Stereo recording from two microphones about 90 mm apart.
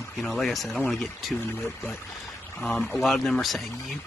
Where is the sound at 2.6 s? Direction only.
5° left (ahead or behind).